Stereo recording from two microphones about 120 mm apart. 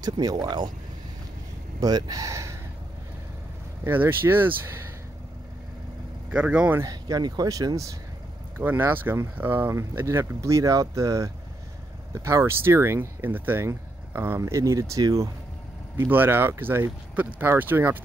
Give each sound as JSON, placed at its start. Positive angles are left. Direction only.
{"t": 0.0, "sound": "speech", "side_deg": -35}
{"t": 1.8, "sound": "speech", "side_deg": -30}
{"t": 3.8, "sound": "speech", "side_deg": -15}
{"t": 6.3, "sound": "speech", "side_deg": -10}
{"t": 6.8, "sound": "speech", "side_deg": -30}
{"t": 8.5, "sound": "speech", "side_deg": -15}
{"t": 16.0, "sound": "speech", "side_deg": -20}